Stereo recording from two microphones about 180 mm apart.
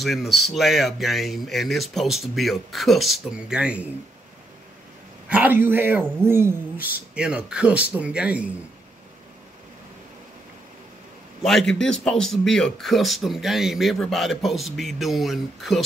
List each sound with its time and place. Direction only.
0.0 s speech: centre (ahead or behind)
5.3 s speech: 10° right (ahead or behind)
11.4 s speech: centre (ahead or behind)